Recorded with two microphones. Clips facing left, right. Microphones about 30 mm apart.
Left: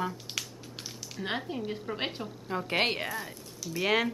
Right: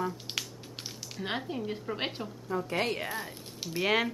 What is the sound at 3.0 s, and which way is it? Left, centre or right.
A woman's voice, centre.